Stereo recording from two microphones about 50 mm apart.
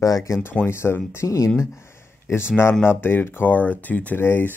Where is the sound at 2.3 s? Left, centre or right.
Left.